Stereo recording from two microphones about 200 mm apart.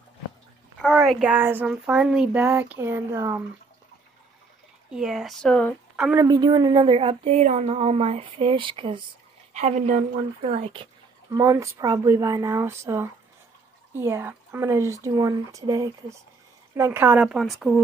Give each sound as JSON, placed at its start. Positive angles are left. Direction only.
{"t": 0.7, "sound": "speech", "side_deg": -5}
{"t": 4.9, "sound": "a woman's voice", "side_deg": 0}
{"t": 6.2, "sound": "a woman's voice", "side_deg": -20}
{"t": 9.5, "sound": "speech", "side_deg": -35}